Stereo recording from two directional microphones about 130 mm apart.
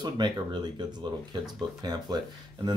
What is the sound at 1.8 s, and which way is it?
Speech, 30° right (ahead or behind).